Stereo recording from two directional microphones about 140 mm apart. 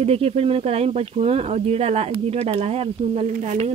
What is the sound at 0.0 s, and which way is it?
Speech, 45° right (ahead or behind).